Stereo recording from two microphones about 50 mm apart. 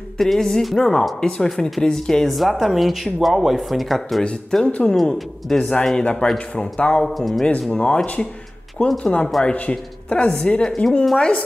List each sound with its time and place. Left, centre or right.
0.2 s speech: centre
2.3 s speech: centre
4.2 s speech: centre
5.5 s speech: centre
7.2 s speech: centre
7.7 s speech: left